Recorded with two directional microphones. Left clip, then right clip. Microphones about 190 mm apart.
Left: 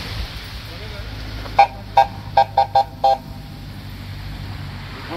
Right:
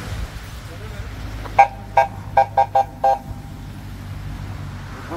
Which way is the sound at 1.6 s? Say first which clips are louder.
Even; 20° right (ahead or behind).